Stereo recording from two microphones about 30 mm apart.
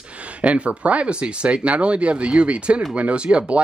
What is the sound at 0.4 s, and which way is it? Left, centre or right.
Speech, right.